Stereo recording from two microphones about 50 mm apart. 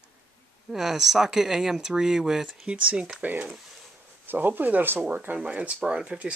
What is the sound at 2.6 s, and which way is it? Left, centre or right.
Speech, right.